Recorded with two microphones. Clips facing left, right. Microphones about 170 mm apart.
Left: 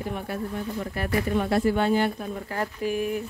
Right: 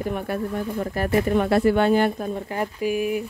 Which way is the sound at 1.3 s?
65° right (ahead or behind).